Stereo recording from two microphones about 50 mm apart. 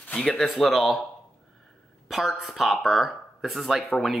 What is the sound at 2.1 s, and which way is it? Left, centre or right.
Speech, centre.